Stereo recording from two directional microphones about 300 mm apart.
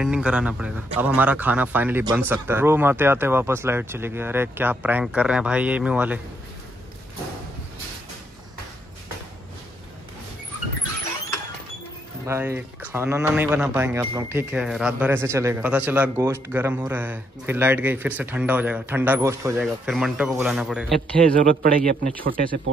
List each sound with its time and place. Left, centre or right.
0.0 s a man's voice: centre
12.3 s a man's voice: centre
21.3 s a man's voice: right